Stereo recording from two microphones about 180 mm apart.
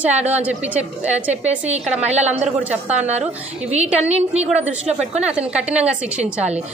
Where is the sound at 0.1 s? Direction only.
35° right (ahead or behind).